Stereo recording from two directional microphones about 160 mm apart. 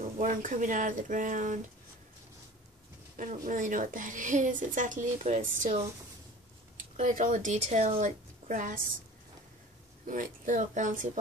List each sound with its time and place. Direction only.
0.2 s speech: 55° right (ahead or behind)
3.4 s speech: 55° right (ahead or behind)
7.0 s speech: 50° right (ahead or behind)
10.0 s speech: 55° right (ahead or behind)